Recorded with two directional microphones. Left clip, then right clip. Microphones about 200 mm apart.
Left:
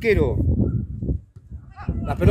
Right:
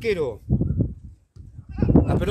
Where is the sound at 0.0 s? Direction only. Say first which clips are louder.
Left 4 dB; 35° left (ahead or behind).